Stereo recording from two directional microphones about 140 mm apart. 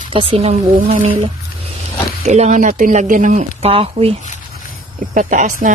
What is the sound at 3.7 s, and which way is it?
Speech, 40° right (ahead or behind).